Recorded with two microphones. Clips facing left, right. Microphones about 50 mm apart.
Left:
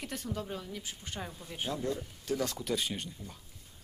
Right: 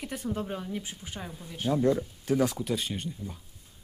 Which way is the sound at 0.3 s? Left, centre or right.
Right.